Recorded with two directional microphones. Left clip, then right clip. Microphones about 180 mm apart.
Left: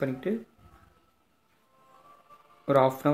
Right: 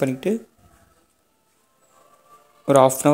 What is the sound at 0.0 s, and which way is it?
Speech, 45° right (ahead or behind).